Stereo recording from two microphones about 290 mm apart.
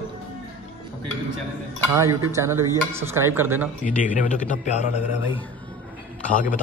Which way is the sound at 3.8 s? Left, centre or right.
Left.